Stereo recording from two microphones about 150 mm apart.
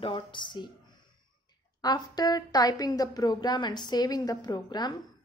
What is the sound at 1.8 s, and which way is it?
A woman's voice, 25° left (ahead or behind).